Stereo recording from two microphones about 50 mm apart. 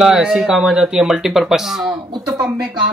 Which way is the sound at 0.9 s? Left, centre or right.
Centre.